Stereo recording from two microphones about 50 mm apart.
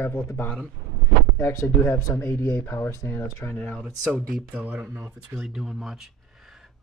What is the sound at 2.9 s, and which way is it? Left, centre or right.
Speech, left.